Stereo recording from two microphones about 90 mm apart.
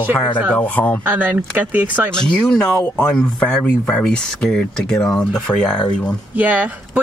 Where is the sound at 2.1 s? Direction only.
10° left (ahead or behind).